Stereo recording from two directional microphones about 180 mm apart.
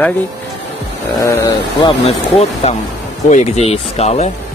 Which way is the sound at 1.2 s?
15° left (ahead or behind).